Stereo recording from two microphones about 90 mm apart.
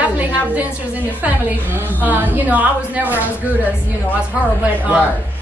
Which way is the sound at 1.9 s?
20° right (ahead or behind).